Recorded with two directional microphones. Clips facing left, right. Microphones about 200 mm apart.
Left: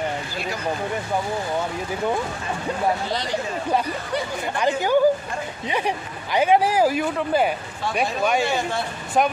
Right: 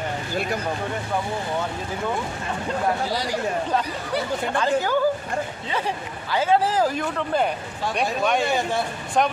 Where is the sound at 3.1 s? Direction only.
10° right (ahead or behind).